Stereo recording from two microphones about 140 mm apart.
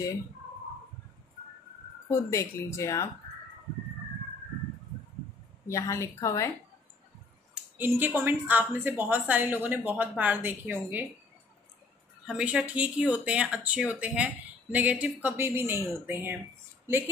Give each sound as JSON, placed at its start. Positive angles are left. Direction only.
{"t": 2.0, "sound": "speech", "side_deg": 20}
{"t": 5.7, "sound": "speech", "side_deg": 20}
{"t": 7.7, "sound": "speech", "side_deg": -15}
{"t": 12.3, "sound": "speech", "side_deg": -5}